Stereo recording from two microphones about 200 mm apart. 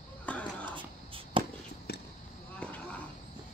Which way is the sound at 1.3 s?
25° right (ahead or behind).